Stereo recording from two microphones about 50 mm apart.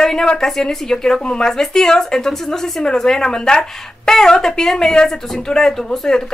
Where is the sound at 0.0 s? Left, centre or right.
Centre.